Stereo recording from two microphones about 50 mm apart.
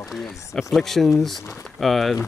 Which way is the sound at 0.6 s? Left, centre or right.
Centre.